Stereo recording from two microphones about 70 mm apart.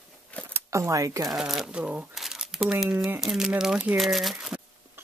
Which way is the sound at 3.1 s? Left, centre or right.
Centre.